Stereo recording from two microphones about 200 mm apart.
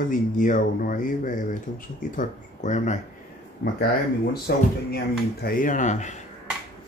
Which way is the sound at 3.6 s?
50° left (ahead or behind).